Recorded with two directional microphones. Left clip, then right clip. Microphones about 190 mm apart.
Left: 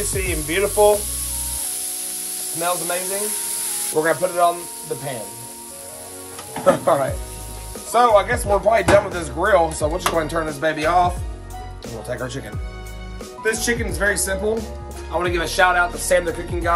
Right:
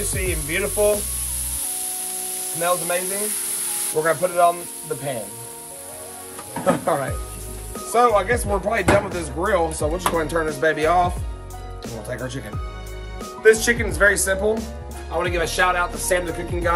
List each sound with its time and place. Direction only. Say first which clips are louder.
0.1 s speech: left 2 dB; 15° left (ahead or behind)
2.6 s speech: right 1 dB; 5° left (ahead or behind)
4.2 s speech: even; 10° left (ahead or behind)
6.6 s speech: left 4 dB; 15° left (ahead or behind)
12.1 s speech: left 3 dB; 15° left (ahead or behind)
13.4 s speech: right 6 dB; 10° right (ahead or behind)
15.1 s speech: left 2 dB; 5° left (ahead or behind)